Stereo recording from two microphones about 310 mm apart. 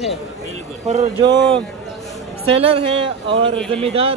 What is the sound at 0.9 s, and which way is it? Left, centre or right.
Speech, right.